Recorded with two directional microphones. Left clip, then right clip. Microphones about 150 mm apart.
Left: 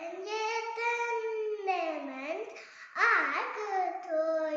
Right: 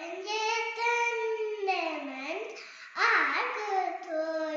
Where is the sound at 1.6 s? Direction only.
10° left (ahead or behind).